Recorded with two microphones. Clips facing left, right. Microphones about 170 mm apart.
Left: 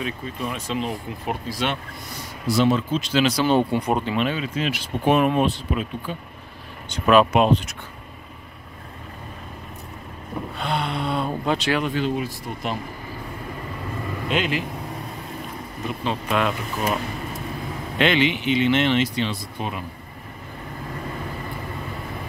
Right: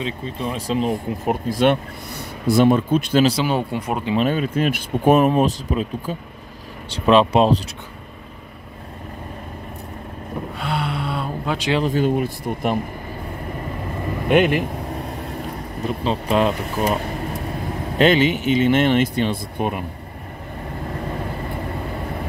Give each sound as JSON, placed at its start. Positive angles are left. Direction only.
{"t": 0.0, "sound": "speech", "side_deg": -30}
{"t": 3.4, "sound": "speech", "side_deg": -5}
{"t": 4.2, "sound": "speech", "side_deg": -45}
{"t": 6.9, "sound": "speech", "side_deg": -30}
{"t": 10.6, "sound": "a sound", "side_deg": -5}
{"t": 11.9, "sound": "speech", "side_deg": -50}
{"t": 14.2, "sound": "speech", "side_deg": -55}
{"t": 16.0, "sound": "speech", "side_deg": -35}
{"t": 17.9, "sound": "speech", "side_deg": -40}